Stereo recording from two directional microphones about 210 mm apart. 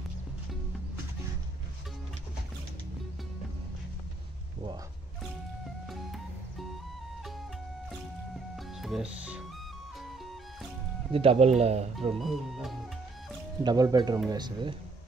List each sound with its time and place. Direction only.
5.9 s music: centre (ahead or behind)
8.5 s music: centre (ahead or behind)
11.1 s speech: 25° right (ahead or behind)
12.1 s speech: centre (ahead or behind)
13.6 s speech: 20° right (ahead or behind)